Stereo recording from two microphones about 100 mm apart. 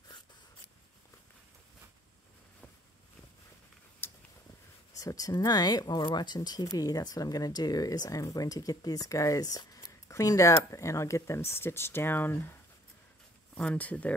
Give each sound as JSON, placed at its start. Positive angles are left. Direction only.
{"t": 4.0, "sound": "a sound", "side_deg": 20}
{"t": 4.9, "sound": "speech", "side_deg": 35}
{"t": 13.6, "sound": "speech", "side_deg": 15}